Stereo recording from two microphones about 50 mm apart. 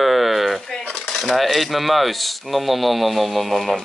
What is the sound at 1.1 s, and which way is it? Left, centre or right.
A woman's voice, centre.